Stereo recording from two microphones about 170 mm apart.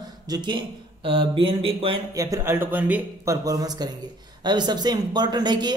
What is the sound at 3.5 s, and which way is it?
A woman's voice, 20° right (ahead or behind).